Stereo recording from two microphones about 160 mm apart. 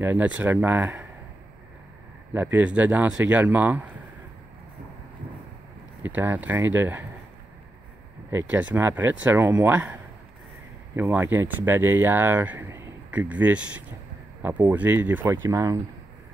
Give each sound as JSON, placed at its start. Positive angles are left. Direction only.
{"t": 0.0, "sound": "speech", "side_deg": -10}
{"t": 2.3, "sound": "speech", "side_deg": -10}
{"t": 6.0, "sound": "speech", "side_deg": -10}
{"t": 8.3, "sound": "speech", "side_deg": -10}
{"t": 11.0, "sound": "speech", "side_deg": -15}